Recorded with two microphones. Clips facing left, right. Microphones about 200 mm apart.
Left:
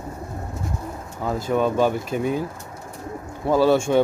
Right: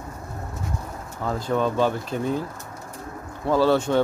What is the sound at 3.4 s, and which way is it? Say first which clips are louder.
Speech: left 2 dB; 15° left (ahead or behind).